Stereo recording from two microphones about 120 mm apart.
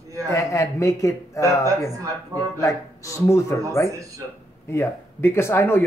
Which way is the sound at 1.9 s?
25° right (ahead or behind).